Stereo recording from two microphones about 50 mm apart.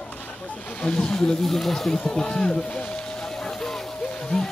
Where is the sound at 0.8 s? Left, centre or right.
Centre.